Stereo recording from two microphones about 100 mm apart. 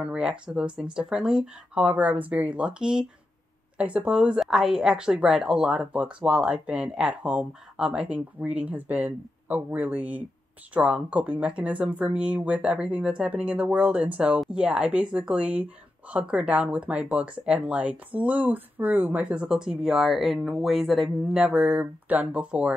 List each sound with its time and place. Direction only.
0.0 s a woman's voice: 10° right (ahead or behind)
21.4 s a woman's voice: 15° right (ahead or behind)